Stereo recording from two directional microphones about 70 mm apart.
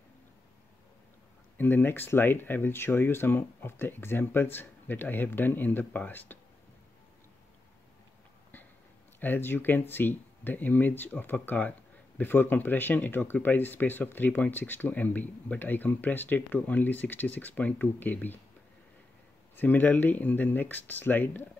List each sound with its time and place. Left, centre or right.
1.6 s speech: left
9.2 s speech: left
19.5 s speech: left